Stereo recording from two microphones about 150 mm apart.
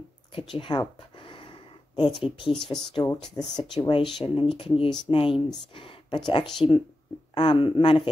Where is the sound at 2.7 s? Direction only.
30° left (ahead or behind).